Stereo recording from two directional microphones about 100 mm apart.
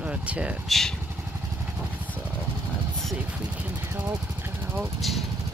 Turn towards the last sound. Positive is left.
turn(degrees=0)  # may be behind; listen again after turning